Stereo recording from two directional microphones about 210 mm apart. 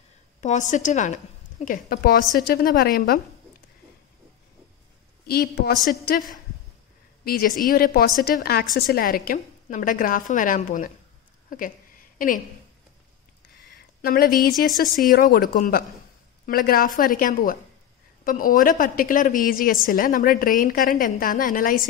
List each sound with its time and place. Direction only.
0.4 s a woman's voice: 35° left (ahead or behind)
5.2 s a woman's voice: 45° left (ahead or behind)
7.2 s a woman's voice: 45° left (ahead or behind)
14.0 s a woman's voice: 45° left (ahead or behind)